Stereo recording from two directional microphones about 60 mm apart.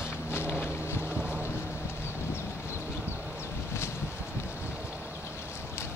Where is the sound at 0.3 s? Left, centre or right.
Left.